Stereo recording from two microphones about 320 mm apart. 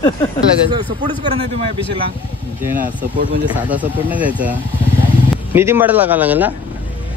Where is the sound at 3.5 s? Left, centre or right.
Centre.